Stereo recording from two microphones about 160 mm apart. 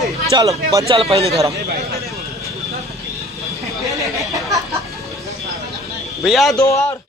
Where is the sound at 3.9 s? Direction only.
20° right (ahead or behind).